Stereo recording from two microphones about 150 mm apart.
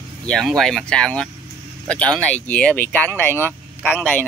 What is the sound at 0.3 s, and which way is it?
Speech, centre (ahead or behind).